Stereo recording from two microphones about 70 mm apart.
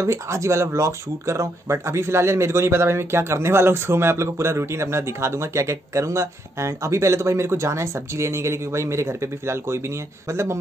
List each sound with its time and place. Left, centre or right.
0.0 s speech: right